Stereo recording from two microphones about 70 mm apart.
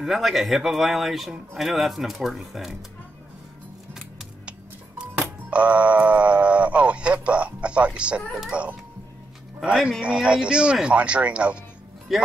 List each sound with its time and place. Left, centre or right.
0.0 s speech: centre
4.5 s music: centre
5.5 s speech: centre
12.1 s speech: centre